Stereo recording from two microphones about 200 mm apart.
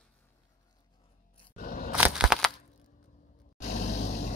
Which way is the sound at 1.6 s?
45° left (ahead or behind).